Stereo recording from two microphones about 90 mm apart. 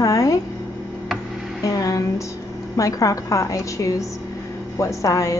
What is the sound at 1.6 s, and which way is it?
A woman's voice, 40° left (ahead or behind).